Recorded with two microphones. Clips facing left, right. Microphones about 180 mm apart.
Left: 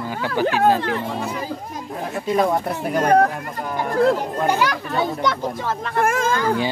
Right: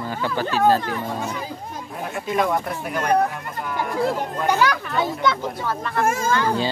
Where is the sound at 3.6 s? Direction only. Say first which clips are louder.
Left 1 dB; 40° left (ahead or behind).